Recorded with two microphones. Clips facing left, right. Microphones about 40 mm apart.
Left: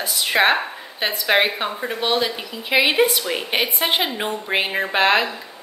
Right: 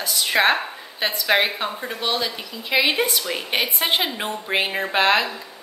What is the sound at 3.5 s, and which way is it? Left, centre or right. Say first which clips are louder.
A woman's voice: even; centre.